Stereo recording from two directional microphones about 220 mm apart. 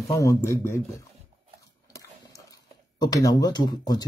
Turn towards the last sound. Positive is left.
turn(degrees=15)  # may be behind; listen again after turning